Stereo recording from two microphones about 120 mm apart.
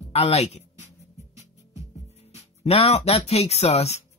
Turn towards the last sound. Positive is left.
turn(degrees=60)  # may be behind; listen again after turning